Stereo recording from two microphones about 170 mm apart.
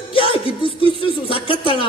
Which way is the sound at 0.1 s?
30° left (ahead or behind).